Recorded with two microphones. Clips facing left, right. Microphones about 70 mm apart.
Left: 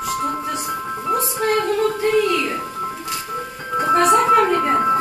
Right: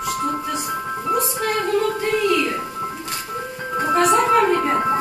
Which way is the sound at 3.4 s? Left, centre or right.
Centre.